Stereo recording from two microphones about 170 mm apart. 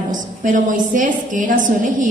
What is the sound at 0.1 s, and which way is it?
A woman's voice, 50° right (ahead or behind).